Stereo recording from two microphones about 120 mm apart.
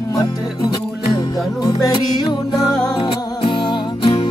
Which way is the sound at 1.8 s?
35° left (ahead or behind).